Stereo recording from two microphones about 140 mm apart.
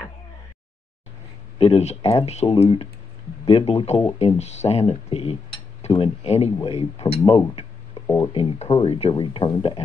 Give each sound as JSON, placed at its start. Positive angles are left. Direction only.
{"t": 1.6, "sound": "speech", "side_deg": 45}